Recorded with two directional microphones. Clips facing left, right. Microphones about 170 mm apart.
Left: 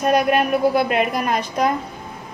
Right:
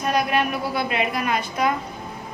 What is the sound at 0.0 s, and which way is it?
Speech, 50° left (ahead or behind).